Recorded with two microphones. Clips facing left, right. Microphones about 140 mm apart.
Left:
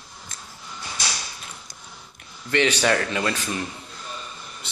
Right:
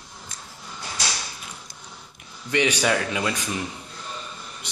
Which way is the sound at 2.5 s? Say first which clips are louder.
Left 1 dB; 15° right (ahead or behind).